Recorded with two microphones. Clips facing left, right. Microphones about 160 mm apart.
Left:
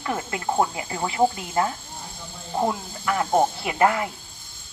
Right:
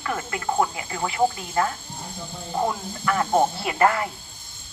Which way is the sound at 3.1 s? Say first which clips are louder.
Even; 15° left (ahead or behind).